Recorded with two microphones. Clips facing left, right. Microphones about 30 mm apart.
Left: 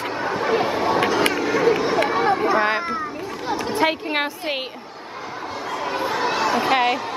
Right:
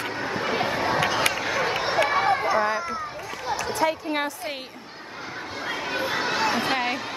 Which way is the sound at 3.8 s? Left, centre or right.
Left.